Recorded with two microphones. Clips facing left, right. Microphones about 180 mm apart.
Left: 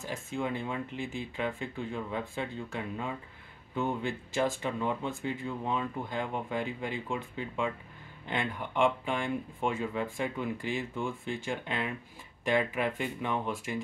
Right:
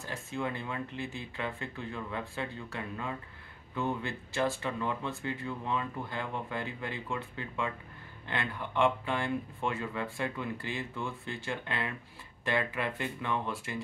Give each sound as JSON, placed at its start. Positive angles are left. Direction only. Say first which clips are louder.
{"t": 0.0, "sound": "speech", "louder": "left 2 dB", "side_deg": 15}